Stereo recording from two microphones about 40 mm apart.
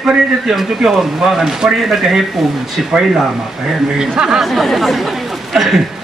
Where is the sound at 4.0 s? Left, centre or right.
Centre.